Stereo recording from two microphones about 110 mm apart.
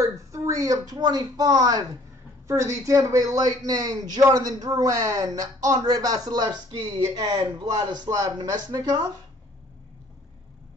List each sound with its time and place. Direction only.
0.0 s a man's voice: 30° right (ahead or behind)